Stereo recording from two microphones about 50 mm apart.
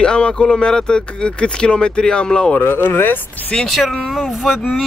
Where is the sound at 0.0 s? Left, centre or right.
Centre.